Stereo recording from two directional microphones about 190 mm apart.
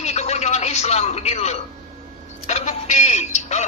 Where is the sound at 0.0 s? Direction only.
35° left (ahead or behind).